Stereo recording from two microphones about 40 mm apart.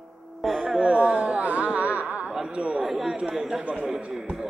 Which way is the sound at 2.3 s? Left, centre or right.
Right.